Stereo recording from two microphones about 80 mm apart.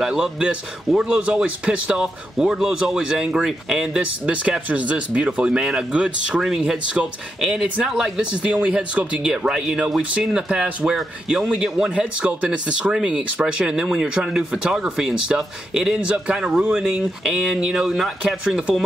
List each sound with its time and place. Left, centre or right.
0.0 s speech: centre